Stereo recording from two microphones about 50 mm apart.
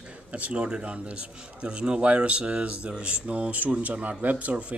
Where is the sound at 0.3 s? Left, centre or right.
Right.